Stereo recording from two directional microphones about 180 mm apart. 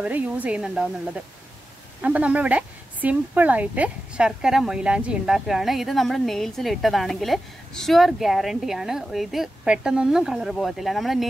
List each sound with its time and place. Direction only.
0.0 s a woman's voice: 10° right (ahead or behind)